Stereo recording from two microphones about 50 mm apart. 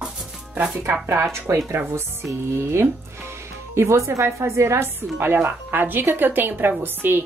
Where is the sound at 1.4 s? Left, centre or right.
Right.